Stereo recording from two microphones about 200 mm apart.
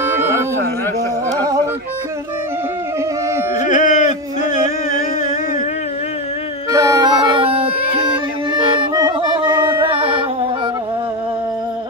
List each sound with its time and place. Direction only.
3.5 s music: 40° left (ahead or behind)
6.7 s music: 15° right (ahead or behind)